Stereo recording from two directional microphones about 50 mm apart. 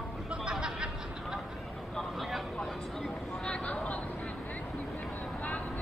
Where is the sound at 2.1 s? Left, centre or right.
Centre.